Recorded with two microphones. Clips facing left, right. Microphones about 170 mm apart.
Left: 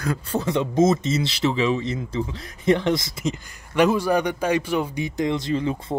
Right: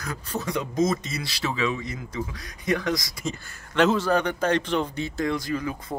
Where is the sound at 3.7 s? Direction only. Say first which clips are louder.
Left 2 dB; 10° left (ahead or behind); by 5.9 s 25° left (ahead or behind).